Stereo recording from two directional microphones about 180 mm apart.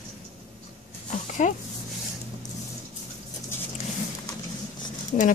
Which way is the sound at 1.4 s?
45° left (ahead or behind).